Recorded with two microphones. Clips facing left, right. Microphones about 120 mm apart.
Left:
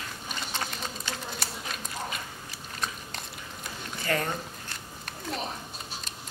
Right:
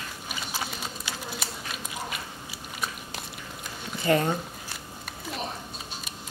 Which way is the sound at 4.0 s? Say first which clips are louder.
Right 6 dB; 20° right (ahead or behind).